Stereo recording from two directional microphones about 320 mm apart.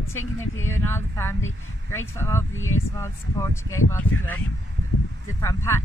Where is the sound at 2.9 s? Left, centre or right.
Centre.